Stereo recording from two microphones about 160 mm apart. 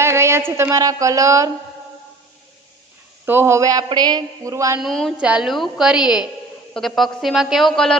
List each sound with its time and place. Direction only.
0.0 s speech: 15° right (ahead or behind)
3.3 s a woman's voice: 15° right (ahead or behind)
4.7 s a woman's voice: centre (ahead or behind)